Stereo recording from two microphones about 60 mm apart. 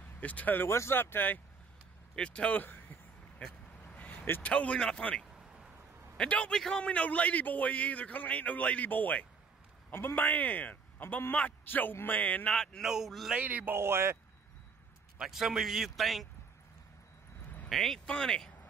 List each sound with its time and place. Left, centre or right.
0.2 s a man's voice: left
0.7 s speech: left
2.1 s a man's voice: centre
2.6 s a sound: left
3.3 s a sound: left
4.5 s a man's voice: centre
12.8 s speech: centre
13.4 s speech: right
13.7 s speech: right
15.1 s speech: centre
17.6 s speech: centre
18.0 s speech: centre